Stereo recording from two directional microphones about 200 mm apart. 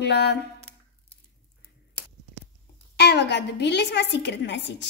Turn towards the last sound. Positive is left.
turn(degrees=60)  # may be behind; listen again after turning